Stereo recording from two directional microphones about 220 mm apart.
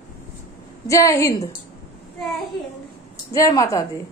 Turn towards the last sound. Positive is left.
turn(degrees=15)  # may be behind; listen again after turning